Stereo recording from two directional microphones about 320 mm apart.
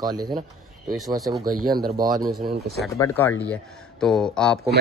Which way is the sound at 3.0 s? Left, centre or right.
Centre.